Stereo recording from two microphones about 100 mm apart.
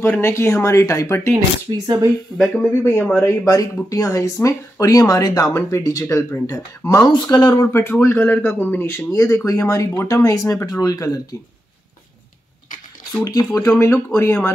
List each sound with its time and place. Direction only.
0.0 s speech: 25° left (ahead or behind)
1.3 s speech: 40° right (ahead or behind)
2.3 s speech: 5° left (ahead or behind)
2.7 s speech: 25° left (ahead or behind)
7.6 s speech: 25° left (ahead or behind)
13.2 s speech: 35° left (ahead or behind)